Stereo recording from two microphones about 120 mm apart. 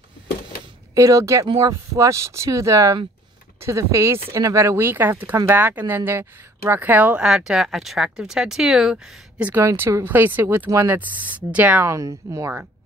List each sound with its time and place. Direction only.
0.9 s speech: 25° right (ahead or behind); by 9.5 s 5° right (ahead or behind)
9.5 s speech: 20° right (ahead or behind)
11.8 s speech: 25° right (ahead or behind)